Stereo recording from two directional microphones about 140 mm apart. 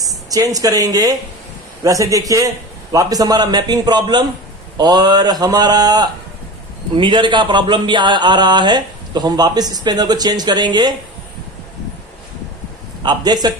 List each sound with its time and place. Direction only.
0.0 s a man's voice: 25° right (ahead or behind)
13.0 s a man's voice: 30° right (ahead or behind)